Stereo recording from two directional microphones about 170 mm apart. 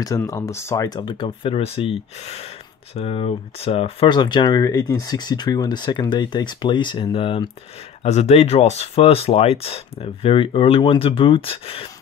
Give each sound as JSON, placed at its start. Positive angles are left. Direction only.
{"t": 0.0, "sound": "speech", "side_deg": 20}